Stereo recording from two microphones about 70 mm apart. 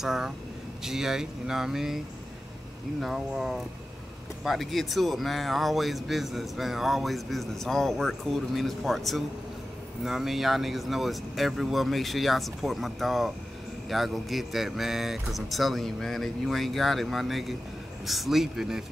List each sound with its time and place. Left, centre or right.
0.0 s speech: centre
3.0 s speech: centre